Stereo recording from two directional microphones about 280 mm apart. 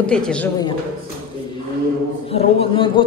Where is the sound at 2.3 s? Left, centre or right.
Centre.